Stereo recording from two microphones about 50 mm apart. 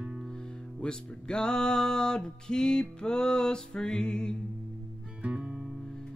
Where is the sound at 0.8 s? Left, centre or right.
Centre.